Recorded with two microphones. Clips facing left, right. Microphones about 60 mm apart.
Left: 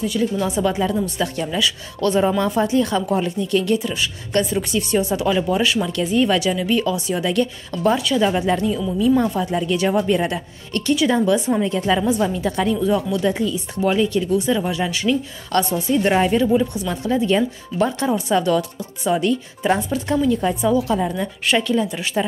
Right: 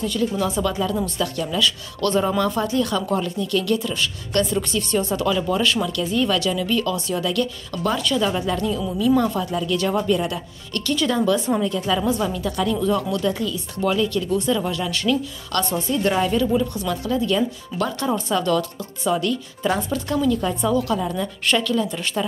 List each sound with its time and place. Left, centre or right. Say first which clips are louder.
0.0 s speech: left 2 dB; centre
0.4 s speech: left 2 dB; left
0.9 s speech: left 2 dB; centre
1.2 s speech: left 1 dB; left
1.6 s a woman's voice: left 1 dB; centre; by 10.8 s left
11.1 s speech: even; left
11.6 s a woman's voice: left 3 dB; left
12.1 s speech: left 3 dB; left
15.5 s a woman's voice: left 4 dB; left
21.8 s speech: left 1 dB; centre